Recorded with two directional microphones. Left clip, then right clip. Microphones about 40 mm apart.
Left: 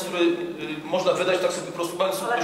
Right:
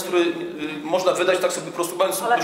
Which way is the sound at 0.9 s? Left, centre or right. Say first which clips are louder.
Right 2 dB; right.